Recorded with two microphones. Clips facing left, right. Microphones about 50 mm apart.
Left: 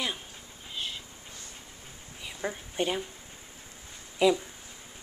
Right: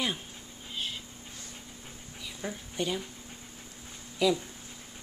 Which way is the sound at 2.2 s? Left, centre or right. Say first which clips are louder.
Left 3 dB; left.